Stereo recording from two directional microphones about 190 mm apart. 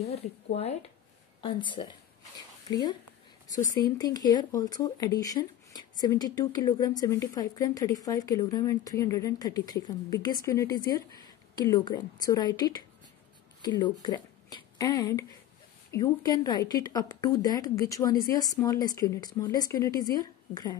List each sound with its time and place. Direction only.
0.0 s speech: 35° left (ahead or behind)